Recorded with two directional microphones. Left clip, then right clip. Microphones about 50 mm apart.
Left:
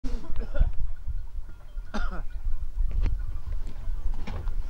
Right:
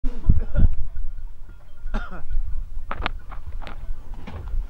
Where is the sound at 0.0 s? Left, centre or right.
Centre.